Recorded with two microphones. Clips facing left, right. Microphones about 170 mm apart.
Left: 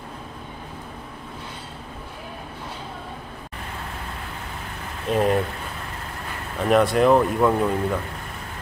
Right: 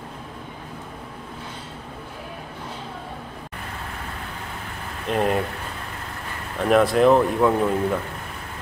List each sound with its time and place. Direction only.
5.1 s speech: centre (ahead or behind)
6.6 s speech: centre (ahead or behind)